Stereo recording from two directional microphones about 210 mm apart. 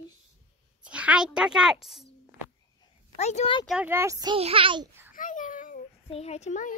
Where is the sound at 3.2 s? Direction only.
30° left (ahead or behind).